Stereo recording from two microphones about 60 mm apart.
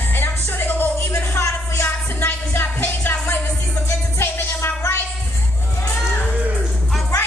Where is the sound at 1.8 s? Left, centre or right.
Left.